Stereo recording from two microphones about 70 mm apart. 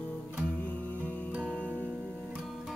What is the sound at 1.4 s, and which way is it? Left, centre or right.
Music, centre.